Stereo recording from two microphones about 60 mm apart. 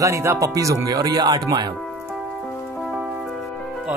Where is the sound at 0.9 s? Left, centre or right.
Right.